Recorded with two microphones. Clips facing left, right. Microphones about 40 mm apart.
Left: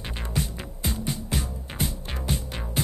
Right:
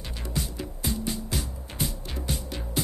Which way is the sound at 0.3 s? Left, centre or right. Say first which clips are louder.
Even; left.